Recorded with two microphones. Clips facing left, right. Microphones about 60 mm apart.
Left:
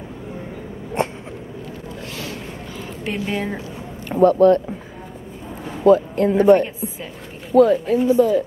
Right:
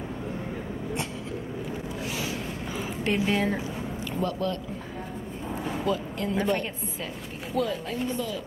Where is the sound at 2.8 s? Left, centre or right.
Centre.